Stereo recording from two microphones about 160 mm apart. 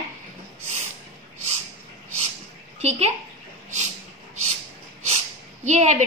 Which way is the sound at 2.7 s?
40° right (ahead or behind).